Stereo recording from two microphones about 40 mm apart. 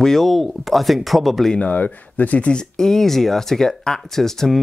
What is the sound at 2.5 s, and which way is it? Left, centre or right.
Speech, centre.